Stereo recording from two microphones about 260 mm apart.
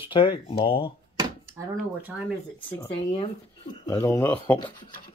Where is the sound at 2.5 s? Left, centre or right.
Centre.